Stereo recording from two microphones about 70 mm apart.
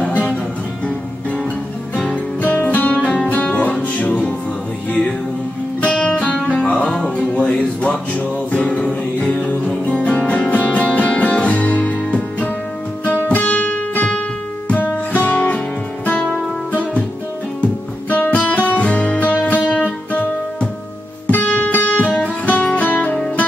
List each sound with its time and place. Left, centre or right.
0.0 s music: centre
2.0 s music: centre
5.8 s music: centre
18.1 s music: left
21.3 s music: left